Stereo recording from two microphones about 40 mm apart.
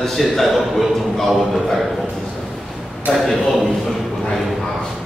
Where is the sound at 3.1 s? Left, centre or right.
Centre.